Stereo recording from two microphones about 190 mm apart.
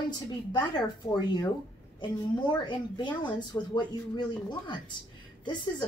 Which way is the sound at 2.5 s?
25° left (ahead or behind).